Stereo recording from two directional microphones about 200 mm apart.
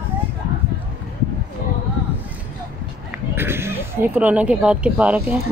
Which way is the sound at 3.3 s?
10° right (ahead or behind).